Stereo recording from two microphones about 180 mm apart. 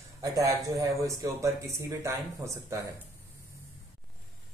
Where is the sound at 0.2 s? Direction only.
20° right (ahead or behind).